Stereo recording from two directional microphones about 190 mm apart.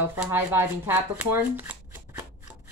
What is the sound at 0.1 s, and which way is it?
Speech, 10° right (ahead or behind).